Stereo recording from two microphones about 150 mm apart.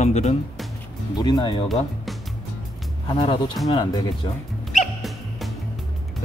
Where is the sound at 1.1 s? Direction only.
30° left (ahead or behind).